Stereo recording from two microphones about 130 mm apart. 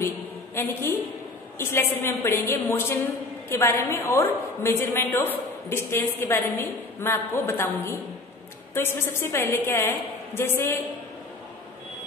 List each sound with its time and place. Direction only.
0.6 s a woman's voice: 20° left (ahead or behind)